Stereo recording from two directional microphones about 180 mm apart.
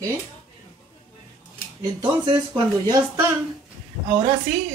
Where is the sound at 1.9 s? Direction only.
25° right (ahead or behind).